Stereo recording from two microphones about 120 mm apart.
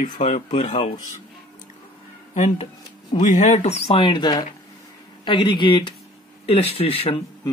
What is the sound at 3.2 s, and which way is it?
Speech, 85° left.